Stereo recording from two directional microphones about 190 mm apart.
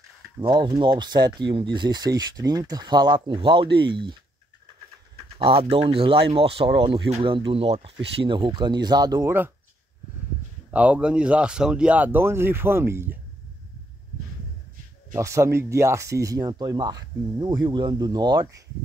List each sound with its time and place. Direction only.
0.4 s speech: 25° right (ahead or behind)
5.4 s speech: 30° right (ahead or behind)
10.7 s speech: 5° right (ahead or behind)
15.1 s speech: 15° right (ahead or behind)